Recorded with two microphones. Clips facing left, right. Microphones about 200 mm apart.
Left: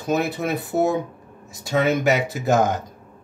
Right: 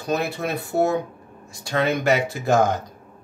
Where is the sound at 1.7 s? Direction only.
5° left (ahead or behind).